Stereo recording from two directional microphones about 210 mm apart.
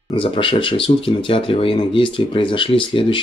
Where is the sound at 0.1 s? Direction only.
25° left (ahead or behind).